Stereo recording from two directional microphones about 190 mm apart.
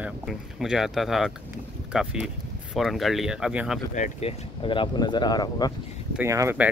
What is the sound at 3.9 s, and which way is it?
Speech, 40° left (ahead or behind).